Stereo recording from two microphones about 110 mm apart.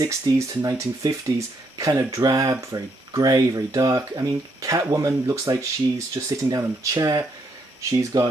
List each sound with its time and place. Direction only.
0.0 s speech: 30° right (ahead or behind)